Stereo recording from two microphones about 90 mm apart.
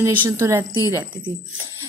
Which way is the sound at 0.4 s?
35° right (ahead or behind).